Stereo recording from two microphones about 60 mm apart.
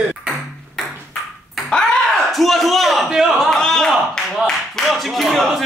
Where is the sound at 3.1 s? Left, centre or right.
Centre.